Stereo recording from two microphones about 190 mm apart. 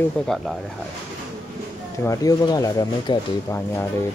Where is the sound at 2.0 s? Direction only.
15° left (ahead or behind).